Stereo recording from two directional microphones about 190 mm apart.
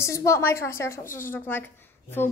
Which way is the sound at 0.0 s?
15° left (ahead or behind).